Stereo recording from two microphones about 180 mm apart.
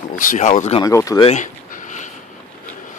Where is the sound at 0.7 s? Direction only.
20° left (ahead or behind).